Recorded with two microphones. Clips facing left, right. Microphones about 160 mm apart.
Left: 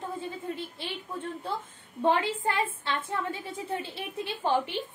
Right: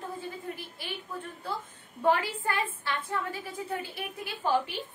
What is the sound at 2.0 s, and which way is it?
A woman's voice, 25° left (ahead or behind).